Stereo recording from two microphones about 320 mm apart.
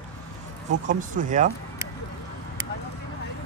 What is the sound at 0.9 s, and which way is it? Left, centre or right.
Speech, right.